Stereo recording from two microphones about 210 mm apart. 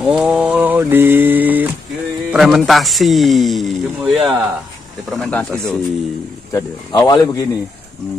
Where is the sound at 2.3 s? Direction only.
5° right (ahead or behind).